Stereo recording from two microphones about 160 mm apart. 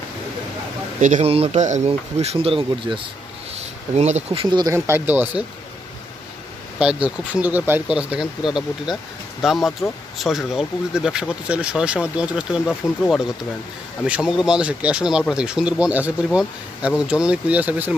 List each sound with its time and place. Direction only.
1.0 s a man's voice: 50° right (ahead or behind)
1.3 s speech: 40° right (ahead or behind)
3.9 s speech: 45° right (ahead or behind); by 5.3 s 10° right (ahead or behind)
6.8 s speech: 5° right (ahead or behind)
14.0 s speech: 5° right (ahead or behind)